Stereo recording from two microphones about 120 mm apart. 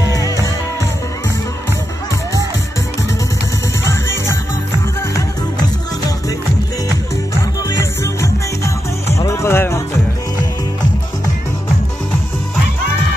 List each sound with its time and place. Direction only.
0.0 s music: 30° left (ahead or behind)
3.8 s music: 20° left (ahead or behind)
7.8 s music: 25° left (ahead or behind)